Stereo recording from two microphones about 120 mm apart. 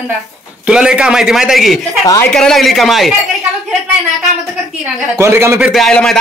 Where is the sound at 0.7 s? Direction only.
5° right (ahead or behind).